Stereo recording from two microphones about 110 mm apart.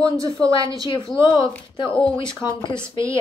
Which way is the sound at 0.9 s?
45° left (ahead or behind).